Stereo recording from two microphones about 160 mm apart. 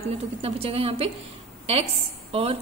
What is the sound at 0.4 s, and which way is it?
Speech, 40° right (ahead or behind).